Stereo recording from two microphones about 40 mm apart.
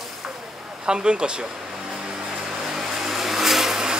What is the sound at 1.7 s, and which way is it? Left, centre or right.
Vehicle, centre.